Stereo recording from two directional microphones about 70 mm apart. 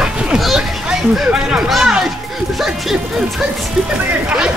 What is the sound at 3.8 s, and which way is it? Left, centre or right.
Speech, right.